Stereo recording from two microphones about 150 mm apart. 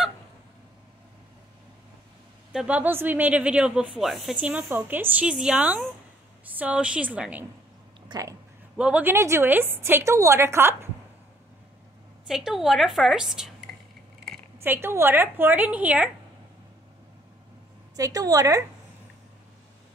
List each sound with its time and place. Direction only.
2.5 s speech: 10° right (ahead or behind)
8.1 s speech: 20° right (ahead or behind)
8.7 s speech: 10° right (ahead or behind)
12.3 s a woman's voice: centre (ahead or behind)
14.6 s speech: 15° right (ahead or behind)
17.9 s a woman's voice: 25° right (ahead or behind)